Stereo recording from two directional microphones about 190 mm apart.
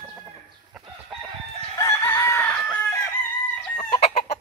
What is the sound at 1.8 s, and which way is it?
Chicken, 15° left (ahead or behind).